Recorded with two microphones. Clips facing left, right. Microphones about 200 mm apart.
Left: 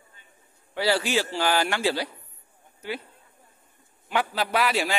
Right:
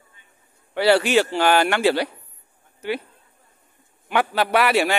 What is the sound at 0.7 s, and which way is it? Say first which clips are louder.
Speech: right 7 dB; 65° right (ahead or behind).